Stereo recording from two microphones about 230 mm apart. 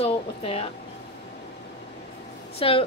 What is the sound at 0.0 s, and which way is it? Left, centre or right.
Speech, left.